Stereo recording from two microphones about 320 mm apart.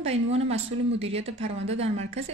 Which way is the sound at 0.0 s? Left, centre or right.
Centre.